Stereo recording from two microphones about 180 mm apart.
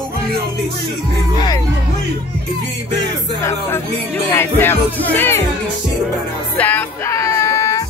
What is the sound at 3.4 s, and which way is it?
Music, 15° left (ahead or behind).